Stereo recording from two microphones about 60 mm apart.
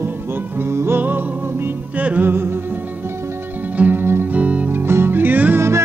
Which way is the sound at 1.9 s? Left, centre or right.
Right.